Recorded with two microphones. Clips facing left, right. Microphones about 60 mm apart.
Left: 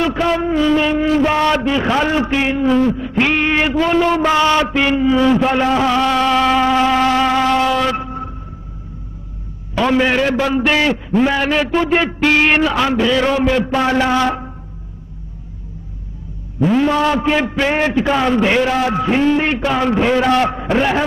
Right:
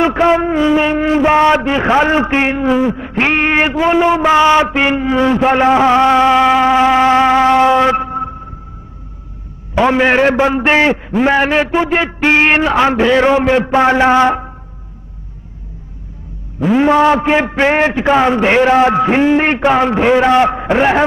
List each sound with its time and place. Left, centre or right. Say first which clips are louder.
0.0 s music: right 5 dB; right
2.6 s a man's voice: right 1 dB; centre
3.0 s a sound: right 2 dB; right
3.7 s music: right 3 dB; centre
9.8 s music: right 4 dB; right
11.9 s a man's voice: even; centre
12.2 s music: right 3 dB; right
16.7 s music: right 6 dB; right